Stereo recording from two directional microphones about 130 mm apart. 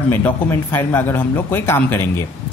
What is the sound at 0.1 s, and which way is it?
Speech, 20° left (ahead or behind).